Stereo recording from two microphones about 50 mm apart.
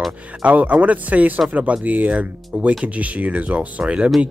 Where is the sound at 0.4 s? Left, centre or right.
Right.